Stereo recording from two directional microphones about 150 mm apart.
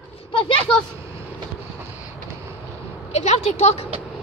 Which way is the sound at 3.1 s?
45° left (ahead or behind).